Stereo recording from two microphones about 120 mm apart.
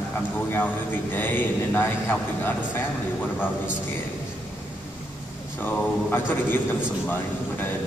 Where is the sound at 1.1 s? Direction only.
15° left (ahead or behind).